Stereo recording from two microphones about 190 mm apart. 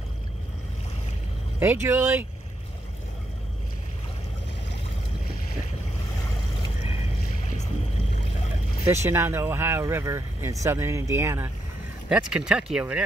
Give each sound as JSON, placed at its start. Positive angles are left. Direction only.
{"t": 1.6, "sound": "speech", "side_deg": -10}
{"t": 7.4, "sound": "boat", "side_deg": 40}
{"t": 8.8, "sound": "speech", "side_deg": -15}